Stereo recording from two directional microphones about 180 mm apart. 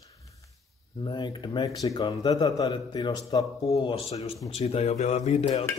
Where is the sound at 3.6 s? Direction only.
30° left (ahead or behind).